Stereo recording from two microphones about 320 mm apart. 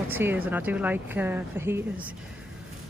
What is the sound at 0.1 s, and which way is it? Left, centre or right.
Speech, centre.